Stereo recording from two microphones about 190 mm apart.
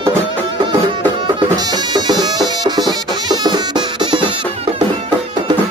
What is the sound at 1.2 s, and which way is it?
Music, 25° right (ahead or behind).